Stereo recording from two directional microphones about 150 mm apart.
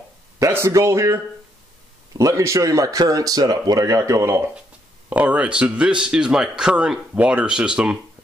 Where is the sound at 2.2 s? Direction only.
20° right (ahead or behind).